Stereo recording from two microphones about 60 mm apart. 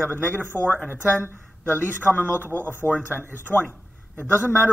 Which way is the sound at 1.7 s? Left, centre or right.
Left.